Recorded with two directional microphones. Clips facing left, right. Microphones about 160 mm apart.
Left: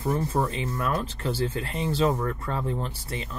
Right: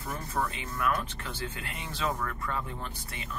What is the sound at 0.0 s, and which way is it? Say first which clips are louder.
Speech: left 8 dB; 30° left (ahead or behind).